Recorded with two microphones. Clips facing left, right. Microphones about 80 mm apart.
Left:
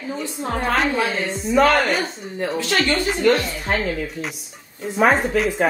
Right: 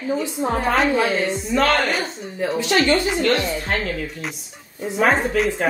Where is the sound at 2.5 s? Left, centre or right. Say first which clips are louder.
Right 3 dB; centre.